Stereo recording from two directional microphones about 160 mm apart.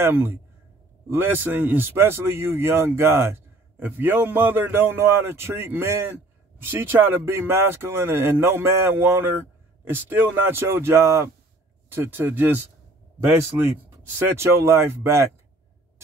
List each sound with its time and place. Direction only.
0.0 s a man's voice: 15° right (ahead or behind)